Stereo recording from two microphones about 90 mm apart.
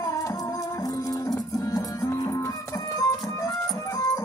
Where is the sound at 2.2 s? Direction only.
30° left (ahead or behind).